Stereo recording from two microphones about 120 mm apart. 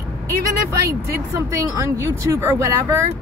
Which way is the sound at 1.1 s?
25° right (ahead or behind).